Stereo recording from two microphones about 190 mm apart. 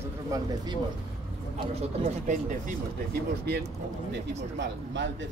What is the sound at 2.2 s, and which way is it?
Speech, 40° right (ahead or behind).